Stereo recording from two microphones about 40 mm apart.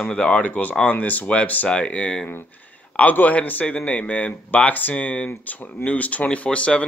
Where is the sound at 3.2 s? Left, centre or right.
Left.